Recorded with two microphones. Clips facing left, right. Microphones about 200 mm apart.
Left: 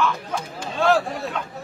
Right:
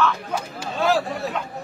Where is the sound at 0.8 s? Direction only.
Centre (ahead or behind).